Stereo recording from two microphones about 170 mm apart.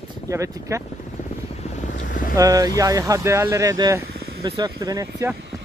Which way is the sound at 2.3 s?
20° right (ahead or behind).